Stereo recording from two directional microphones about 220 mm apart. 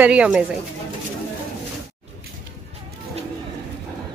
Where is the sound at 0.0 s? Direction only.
5° right (ahead or behind).